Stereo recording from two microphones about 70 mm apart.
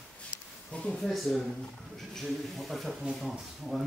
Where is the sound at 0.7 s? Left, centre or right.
Centre.